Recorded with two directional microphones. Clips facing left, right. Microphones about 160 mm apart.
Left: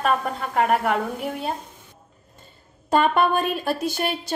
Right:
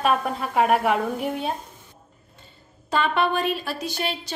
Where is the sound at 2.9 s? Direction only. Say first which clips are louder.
Left 3 dB; 50° left (ahead or behind).